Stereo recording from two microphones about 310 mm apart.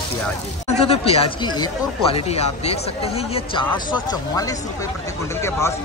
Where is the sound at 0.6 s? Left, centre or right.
Centre.